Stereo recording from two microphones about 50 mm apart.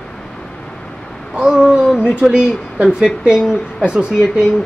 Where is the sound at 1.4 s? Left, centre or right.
Centre.